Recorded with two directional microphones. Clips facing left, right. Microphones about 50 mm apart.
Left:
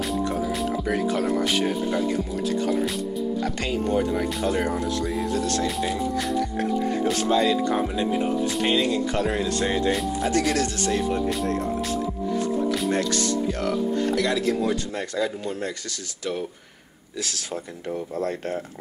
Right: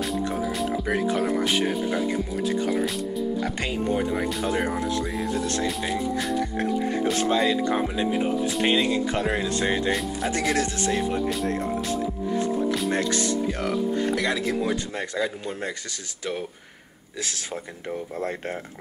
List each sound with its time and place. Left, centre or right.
0.8 s speech: right
1.4 s speech: centre
3.4 s speech: centre
5.7 s speech: centre
7.2 s speech: right
12.9 s speech: right
17.2 s speech: right